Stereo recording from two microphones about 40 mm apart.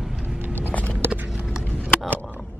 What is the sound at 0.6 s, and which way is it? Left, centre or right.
Vehicle, left.